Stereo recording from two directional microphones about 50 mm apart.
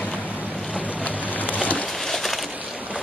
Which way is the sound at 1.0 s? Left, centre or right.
Left.